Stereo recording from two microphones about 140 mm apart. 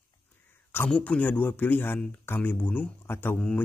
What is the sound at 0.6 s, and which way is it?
Speech, 10° left (ahead or behind).